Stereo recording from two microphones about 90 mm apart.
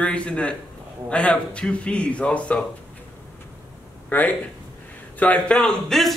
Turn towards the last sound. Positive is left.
turn(degrees=5)  # may be behind; listen again after turning